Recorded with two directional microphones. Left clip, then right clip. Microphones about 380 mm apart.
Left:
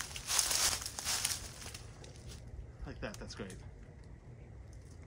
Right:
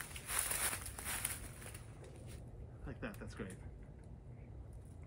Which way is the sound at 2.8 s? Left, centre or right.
Centre.